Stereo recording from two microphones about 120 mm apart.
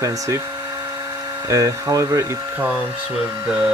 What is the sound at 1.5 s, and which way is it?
Speech, 25° right (ahead or behind).